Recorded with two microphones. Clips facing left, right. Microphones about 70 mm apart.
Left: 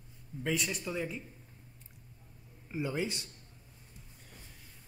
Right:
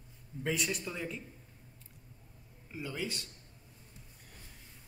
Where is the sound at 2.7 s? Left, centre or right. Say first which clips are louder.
Left 4 dB; left.